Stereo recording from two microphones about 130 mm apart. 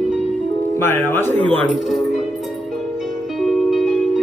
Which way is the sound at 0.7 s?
15° left (ahead or behind).